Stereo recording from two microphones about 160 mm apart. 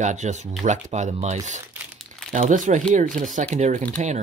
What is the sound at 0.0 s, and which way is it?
Speech, 45° right (ahead or behind).